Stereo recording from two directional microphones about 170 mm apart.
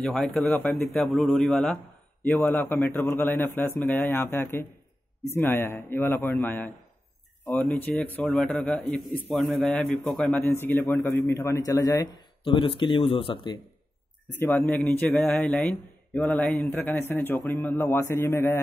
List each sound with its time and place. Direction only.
0.0 s a man's voice: centre (ahead or behind); by 13.6 s 30° left (ahead or behind)
14.7 s a man's voice: 10° left (ahead or behind)